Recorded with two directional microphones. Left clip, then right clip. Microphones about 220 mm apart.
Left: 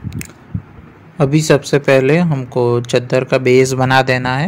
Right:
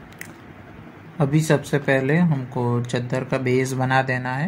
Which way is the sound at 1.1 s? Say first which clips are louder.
Left 8 dB; 30° left (ahead or behind).